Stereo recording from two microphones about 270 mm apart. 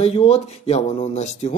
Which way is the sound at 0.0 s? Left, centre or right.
Left.